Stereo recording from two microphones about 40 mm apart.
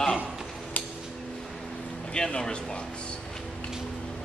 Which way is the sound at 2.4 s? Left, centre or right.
Left.